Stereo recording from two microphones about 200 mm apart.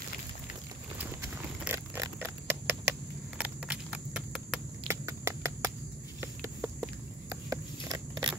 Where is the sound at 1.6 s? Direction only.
10° right (ahead or behind).